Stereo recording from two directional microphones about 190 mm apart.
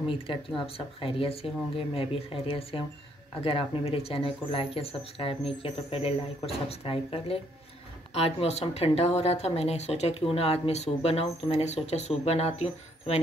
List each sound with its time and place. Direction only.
0.3 s speech: 30° left (ahead or behind)